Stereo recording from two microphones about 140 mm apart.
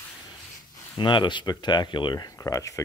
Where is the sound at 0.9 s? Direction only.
35° left (ahead or behind).